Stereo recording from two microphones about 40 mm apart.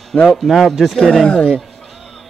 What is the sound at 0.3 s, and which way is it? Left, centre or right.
Speech, centre.